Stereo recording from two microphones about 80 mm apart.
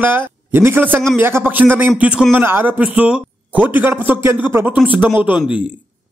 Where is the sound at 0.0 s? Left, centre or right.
Right.